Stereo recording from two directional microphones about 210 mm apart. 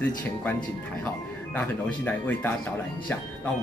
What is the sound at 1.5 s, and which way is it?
Speech, 10° left (ahead or behind).